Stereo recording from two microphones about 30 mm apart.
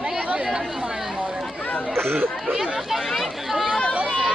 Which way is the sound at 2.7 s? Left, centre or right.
Centre.